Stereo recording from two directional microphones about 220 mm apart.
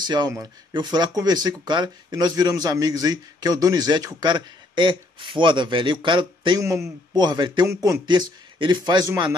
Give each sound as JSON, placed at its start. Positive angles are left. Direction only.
{"t": 0.0, "sound": "speech", "side_deg": -20}